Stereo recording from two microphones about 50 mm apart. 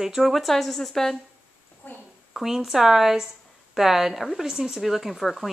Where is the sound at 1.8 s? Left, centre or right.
Left.